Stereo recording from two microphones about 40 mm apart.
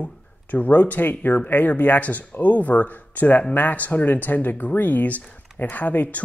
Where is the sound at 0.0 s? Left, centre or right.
Left.